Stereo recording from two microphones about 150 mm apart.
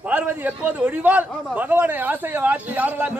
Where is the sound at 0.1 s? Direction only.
10° right (ahead or behind).